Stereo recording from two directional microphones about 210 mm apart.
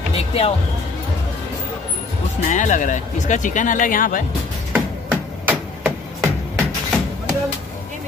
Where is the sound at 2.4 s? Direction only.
35° left (ahead or behind).